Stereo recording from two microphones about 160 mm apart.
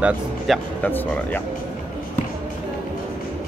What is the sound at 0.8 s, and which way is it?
Speech, 10° left (ahead or behind).